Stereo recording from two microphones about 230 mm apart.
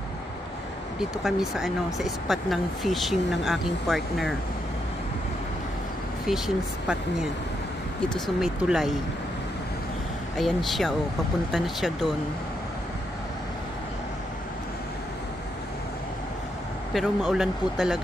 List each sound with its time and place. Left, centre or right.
1.2 s speech: centre
6.2 s speech: centre
10.3 s speech: centre
16.9 s speech: centre